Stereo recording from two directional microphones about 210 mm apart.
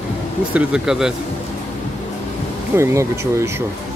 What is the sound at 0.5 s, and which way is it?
Speech, 5° right (ahead or behind).